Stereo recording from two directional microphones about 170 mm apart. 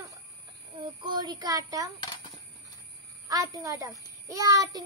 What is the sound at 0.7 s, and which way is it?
A child's voice, 30° right (ahead or behind).